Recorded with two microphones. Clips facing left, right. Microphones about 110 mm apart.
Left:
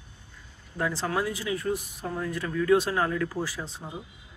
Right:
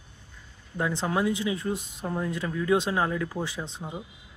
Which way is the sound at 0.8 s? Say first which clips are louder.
Right 2 dB; 20° right (ahead or behind).